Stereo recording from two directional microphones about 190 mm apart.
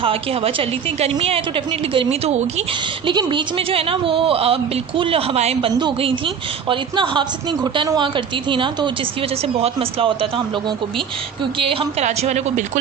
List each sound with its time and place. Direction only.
0.0 s a woman's voice: 30° right (ahead or behind)
11.6 s a woman's voice: 30° right (ahead or behind)